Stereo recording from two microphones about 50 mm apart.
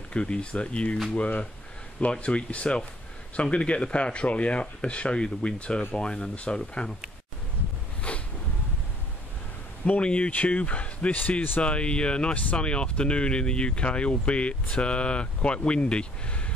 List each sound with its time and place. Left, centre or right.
0.1 s speech: centre
8.1 s a sound: left
9.8 s speech: left